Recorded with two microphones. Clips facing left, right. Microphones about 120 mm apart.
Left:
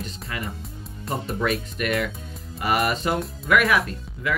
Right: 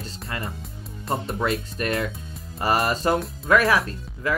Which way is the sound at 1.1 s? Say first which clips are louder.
Even; 25° right (ahead or behind).